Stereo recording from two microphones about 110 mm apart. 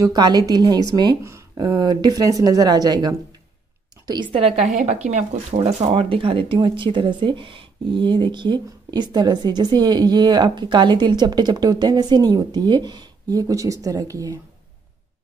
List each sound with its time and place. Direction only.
0.0 s speech: 40° right (ahead or behind)
1.2 s speech: 25° right (ahead or behind)
4.3 s speech: 60° right (ahead or behind); by 5.9 s 85° right
5.9 s speech: 55° right (ahead or behind); by 14.4 s 30° right (ahead or behind)